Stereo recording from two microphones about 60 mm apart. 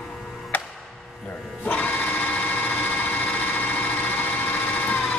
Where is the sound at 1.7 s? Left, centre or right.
Left.